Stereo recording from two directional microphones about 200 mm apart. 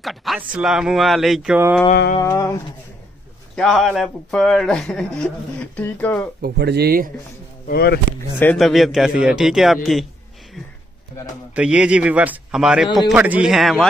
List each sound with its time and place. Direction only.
0.0 s a man's voice: centre (ahead or behind)
2.1 s a sound: 15° left (ahead or behind)
3.5 s a man's voice: centre (ahead or behind)
6.4 s speech: 55° right (ahead or behind)
7.6 s speech: 50° left (ahead or behind)
8.4 s a man's voice: 5° left (ahead or behind)
11.5 s a man's voice: 5° right (ahead or behind)